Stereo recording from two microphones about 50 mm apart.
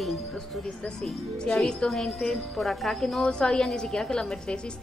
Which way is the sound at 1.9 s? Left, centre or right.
Centre.